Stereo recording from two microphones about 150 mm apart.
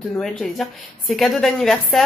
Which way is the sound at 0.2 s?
Centre (ahead or behind).